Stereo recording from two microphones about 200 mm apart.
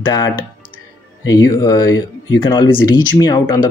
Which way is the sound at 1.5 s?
20° left (ahead or behind).